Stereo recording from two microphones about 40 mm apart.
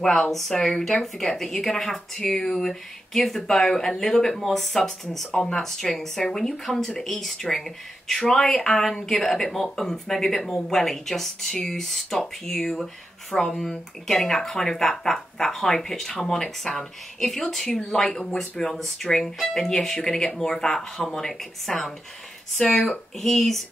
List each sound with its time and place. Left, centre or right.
0.0 s speech: centre
5.3 s speech: centre